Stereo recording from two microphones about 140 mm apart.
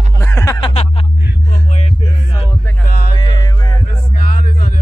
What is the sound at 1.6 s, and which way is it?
Music, 50° left (ahead or behind).